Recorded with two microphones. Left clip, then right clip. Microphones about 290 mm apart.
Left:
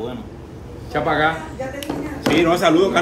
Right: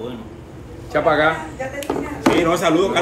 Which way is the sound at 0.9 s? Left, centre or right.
Centre.